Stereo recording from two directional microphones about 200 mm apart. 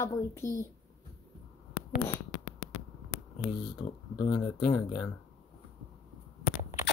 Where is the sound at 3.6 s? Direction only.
20° left (ahead or behind).